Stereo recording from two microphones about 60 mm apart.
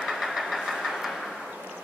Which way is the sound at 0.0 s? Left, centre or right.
Centre.